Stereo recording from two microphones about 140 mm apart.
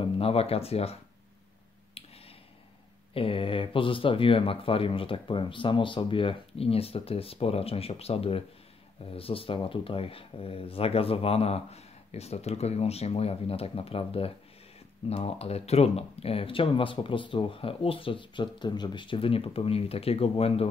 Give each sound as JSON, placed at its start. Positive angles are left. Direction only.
{"t": 0.0, "sound": "speech", "side_deg": 45}
{"t": 2.0, "sound": "a sound", "side_deg": 45}
{"t": 3.2, "sound": "speech", "side_deg": 40}